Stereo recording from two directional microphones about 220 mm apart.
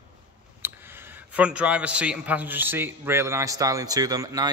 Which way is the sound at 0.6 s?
10° right (ahead or behind).